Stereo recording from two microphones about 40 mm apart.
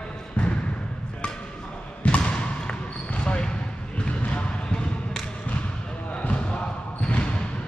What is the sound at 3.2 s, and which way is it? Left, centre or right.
Basketball bounce, left.